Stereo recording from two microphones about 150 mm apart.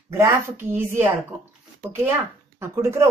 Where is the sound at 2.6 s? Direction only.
20° right (ahead or behind).